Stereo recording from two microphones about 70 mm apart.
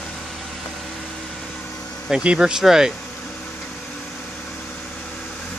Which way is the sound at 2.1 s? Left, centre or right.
Centre.